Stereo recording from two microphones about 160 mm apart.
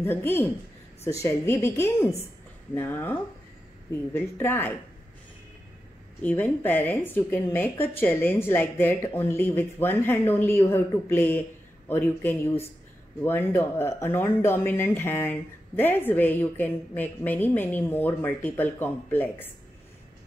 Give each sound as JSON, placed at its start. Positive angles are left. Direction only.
{"t": 0.0, "sound": "speech", "side_deg": 15}
{"t": 6.2, "sound": "speech", "side_deg": 10}